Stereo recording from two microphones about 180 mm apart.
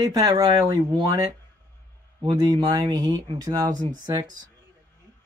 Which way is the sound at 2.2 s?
20° right (ahead or behind).